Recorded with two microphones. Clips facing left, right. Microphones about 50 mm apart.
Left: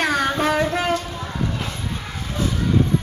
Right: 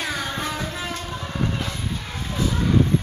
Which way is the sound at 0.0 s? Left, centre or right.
Left.